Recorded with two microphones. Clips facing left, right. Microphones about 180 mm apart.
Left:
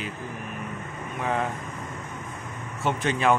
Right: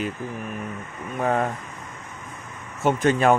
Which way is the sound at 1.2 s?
45° right (ahead or behind).